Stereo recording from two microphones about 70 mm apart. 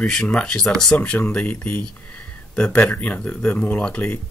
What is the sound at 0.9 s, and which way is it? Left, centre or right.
Speech, centre.